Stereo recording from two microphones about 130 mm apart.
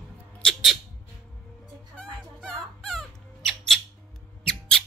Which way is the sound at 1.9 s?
5° left (ahead or behind).